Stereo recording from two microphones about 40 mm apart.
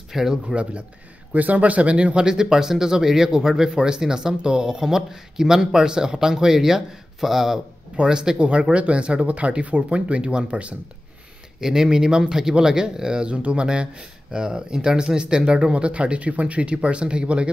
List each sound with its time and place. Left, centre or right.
0.1 s speech: centre
1.3 s speech: right
2.2 s speech: centre
7.9 s speech: right
11.6 s speech: centre